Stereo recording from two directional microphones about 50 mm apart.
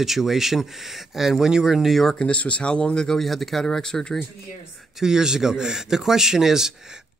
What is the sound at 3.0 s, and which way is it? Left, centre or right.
Speech, centre.